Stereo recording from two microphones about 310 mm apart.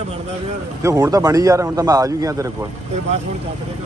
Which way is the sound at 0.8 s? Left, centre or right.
Centre.